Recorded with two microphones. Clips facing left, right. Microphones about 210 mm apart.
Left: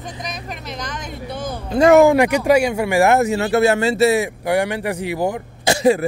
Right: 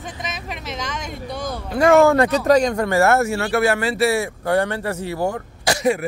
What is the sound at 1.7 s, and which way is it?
Speech, 20° left (ahead or behind).